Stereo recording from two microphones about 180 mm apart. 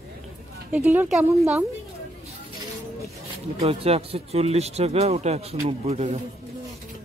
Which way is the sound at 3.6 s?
35° right (ahead or behind).